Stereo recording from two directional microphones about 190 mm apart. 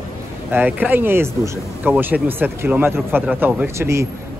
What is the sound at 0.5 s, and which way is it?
Speech, 10° right (ahead or behind).